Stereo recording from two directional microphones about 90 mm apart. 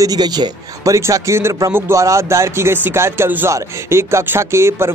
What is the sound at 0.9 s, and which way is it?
Speech, 35° right (ahead or behind).